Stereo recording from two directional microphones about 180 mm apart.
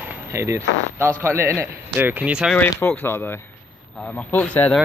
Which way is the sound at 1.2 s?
15° right (ahead or behind).